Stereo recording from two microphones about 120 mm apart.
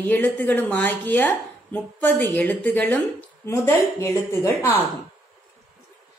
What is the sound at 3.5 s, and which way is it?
A woman's voice, 25° left (ahead or behind).